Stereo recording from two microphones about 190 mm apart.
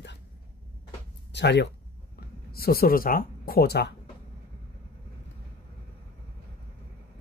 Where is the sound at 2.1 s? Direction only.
55° left (ahead or behind).